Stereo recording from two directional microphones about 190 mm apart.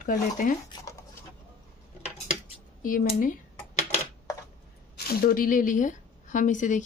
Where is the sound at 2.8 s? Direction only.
45° left (ahead or behind).